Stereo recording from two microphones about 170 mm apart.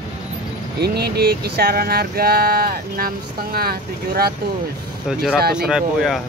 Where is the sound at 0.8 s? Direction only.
70° right (ahead or behind).